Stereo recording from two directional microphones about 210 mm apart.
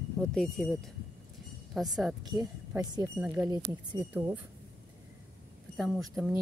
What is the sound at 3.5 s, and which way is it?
Speech, 20° right (ahead or behind).